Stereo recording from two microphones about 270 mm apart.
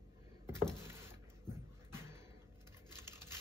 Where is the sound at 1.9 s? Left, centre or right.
Centre.